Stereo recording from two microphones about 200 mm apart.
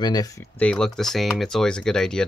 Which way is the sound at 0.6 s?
5° left (ahead or behind).